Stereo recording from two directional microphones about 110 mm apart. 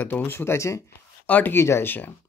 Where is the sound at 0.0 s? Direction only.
15° left (ahead or behind).